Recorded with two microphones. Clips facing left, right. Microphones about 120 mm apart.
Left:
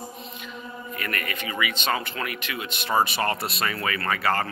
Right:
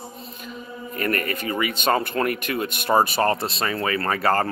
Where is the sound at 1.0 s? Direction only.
40° right (ahead or behind).